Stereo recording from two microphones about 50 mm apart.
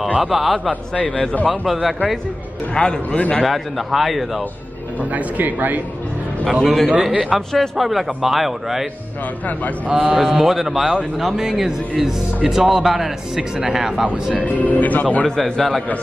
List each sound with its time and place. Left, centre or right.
0.2 s speech: centre
0.7 s a man's voice: left
1.7 s speech: centre
2.7 s a man's voice: centre
3.4 s speech: centre
5.1 s speech: right
6.6 s a man's voice: centre
7.0 s a man's voice: centre
7.5 s speech: centre
9.5 s speech: left
9.8 s a man's voice: right
10.2 s a man's voice: centre
14.4 s speech: left
15.2 s a man's voice: centre